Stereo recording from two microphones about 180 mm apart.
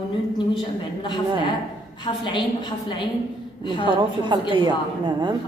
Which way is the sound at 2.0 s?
25° left (ahead or behind).